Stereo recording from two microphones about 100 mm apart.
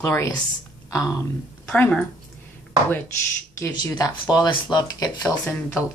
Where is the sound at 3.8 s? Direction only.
40° left (ahead or behind).